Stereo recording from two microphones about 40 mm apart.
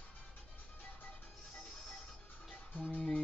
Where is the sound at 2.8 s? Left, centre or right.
Left.